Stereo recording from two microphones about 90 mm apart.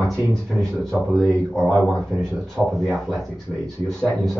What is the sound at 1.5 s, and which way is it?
Speech, centre (ahead or behind).